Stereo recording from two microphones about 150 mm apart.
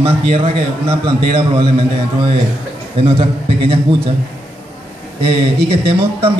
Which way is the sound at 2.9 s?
40° right (ahead or behind).